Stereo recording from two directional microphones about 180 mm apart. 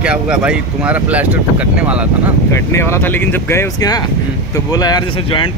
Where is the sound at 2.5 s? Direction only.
15° left (ahead or behind).